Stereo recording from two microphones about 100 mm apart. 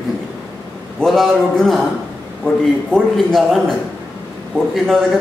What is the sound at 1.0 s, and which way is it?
Speech, 5° left (ahead or behind).